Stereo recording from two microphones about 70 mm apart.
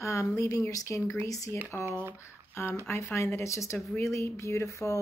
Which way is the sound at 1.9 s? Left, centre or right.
Right.